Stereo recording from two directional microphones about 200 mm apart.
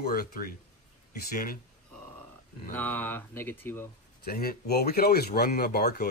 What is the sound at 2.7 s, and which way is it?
A man's voice, 10° left (ahead or behind).